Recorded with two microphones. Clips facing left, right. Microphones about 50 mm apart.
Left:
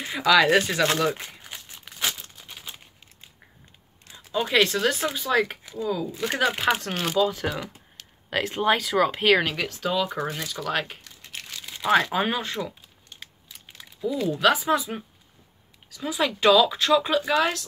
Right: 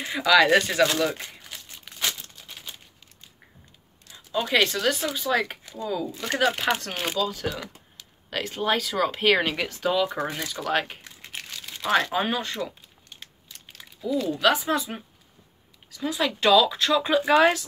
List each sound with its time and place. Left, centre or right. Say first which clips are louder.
0.1 s speech: even; centre
1.9 s crumpling: left 1 dB; centre
4.3 s speech: left 1 dB; centre
7.2 s speech: left 6 dB; centre
13.1 s a sound: left 1 dB; centre
14.0 s speech: left 1 dB; centre
17.2 s speech: right 4 dB; right